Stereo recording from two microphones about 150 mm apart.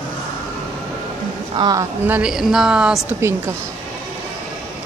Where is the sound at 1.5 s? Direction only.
25° right (ahead or behind).